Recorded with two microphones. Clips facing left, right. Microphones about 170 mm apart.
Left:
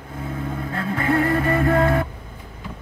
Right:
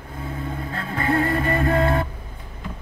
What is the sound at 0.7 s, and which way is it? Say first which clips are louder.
Music: left 2 dB; 30° right (ahead or behind).